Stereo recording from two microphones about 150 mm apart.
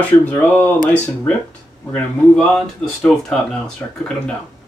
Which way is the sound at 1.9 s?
5° left (ahead or behind).